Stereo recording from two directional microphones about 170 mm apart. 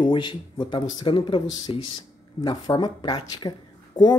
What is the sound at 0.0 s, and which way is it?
Speech, 30° left (ahead or behind).